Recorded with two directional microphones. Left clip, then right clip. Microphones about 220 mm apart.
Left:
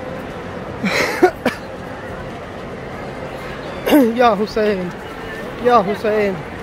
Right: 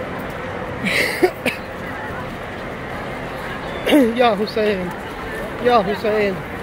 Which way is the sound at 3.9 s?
15° left (ahead or behind).